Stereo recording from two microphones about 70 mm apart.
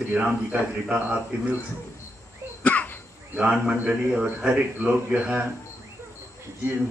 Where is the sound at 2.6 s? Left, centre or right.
Left.